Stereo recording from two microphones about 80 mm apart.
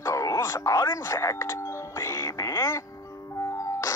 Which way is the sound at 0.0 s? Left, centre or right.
Left.